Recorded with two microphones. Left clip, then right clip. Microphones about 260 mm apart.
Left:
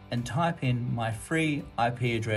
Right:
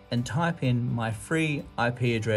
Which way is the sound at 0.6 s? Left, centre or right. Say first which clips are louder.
Right 2 dB; right.